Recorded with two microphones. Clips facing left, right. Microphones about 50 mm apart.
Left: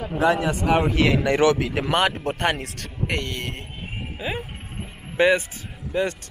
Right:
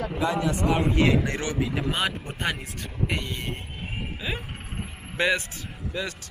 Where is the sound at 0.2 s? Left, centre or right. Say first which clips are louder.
Left 6 dB; left.